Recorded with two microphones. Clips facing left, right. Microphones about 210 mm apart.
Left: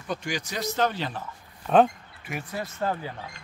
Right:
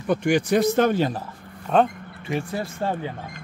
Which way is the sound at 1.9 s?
55° right (ahead or behind).